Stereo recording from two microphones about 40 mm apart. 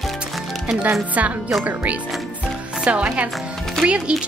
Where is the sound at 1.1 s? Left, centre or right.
Right.